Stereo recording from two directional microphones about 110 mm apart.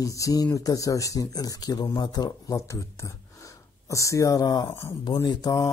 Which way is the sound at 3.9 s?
30° left (ahead or behind).